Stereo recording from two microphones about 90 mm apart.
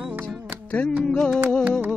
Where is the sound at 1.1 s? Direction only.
5° left (ahead or behind).